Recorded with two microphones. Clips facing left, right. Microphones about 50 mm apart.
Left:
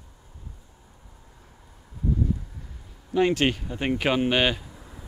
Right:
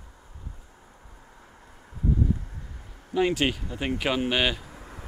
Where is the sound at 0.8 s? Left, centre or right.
Right.